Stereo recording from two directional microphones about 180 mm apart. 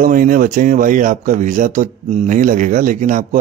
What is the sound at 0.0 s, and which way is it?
Speech, 50° right (ahead or behind).